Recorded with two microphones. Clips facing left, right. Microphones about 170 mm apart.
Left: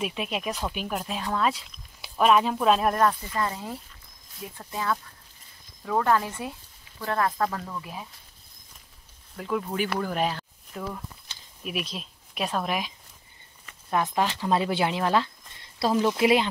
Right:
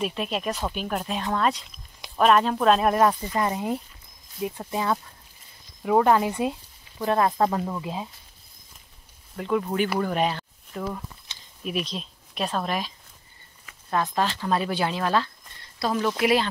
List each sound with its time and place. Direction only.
0.0 s speech: 5° left (ahead or behind)
3.1 s speech: 15° right (ahead or behind)
9.4 s speech: centre (ahead or behind)
11.2 s a sound: 5° left (ahead or behind)
13.8 s speech: 15° left (ahead or behind)